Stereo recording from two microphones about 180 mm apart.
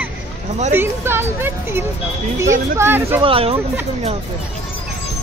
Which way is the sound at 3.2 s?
30° right (ahead or behind).